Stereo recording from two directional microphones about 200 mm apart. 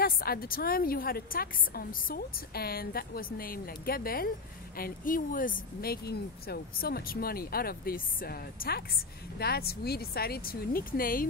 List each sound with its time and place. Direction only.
0.0 s a woman's voice: 50° left (ahead or behind)